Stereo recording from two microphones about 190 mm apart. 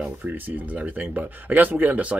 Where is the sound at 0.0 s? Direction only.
10° right (ahead or behind).